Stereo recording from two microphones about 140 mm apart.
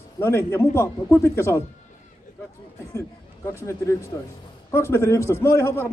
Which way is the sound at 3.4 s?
20° left (ahead or behind).